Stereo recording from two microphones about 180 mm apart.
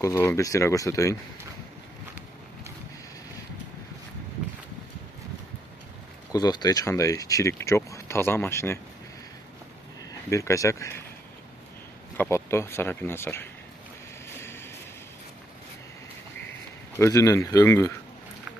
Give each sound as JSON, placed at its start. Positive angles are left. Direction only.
{"t": 0.0, "sound": "speech", "side_deg": 15}
{"t": 6.3, "sound": "speech", "side_deg": 20}
{"t": 10.3, "sound": "speech", "side_deg": 15}
{"t": 12.2, "sound": "speech", "side_deg": 15}
{"t": 14.3, "sound": "vehicle", "side_deg": 15}
{"t": 16.9, "sound": "speech", "side_deg": 15}